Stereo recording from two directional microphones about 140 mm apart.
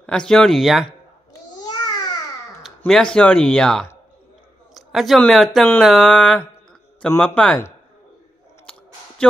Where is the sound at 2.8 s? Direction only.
5° left (ahead or behind).